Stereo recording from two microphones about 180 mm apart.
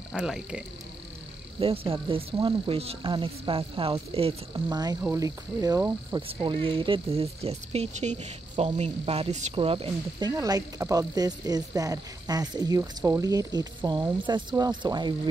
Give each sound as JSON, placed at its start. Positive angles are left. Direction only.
{"t": 0.1, "sound": "insect", "side_deg": -5}
{"t": 1.6, "sound": "speech", "side_deg": -30}
{"t": 5.0, "sound": "cricket", "side_deg": -15}
{"t": 6.2, "sound": "speech", "side_deg": -30}
{"t": 9.6, "sound": "cricket", "side_deg": -30}